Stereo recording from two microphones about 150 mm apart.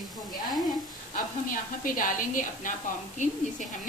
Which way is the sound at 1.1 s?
65° left (ahead or behind).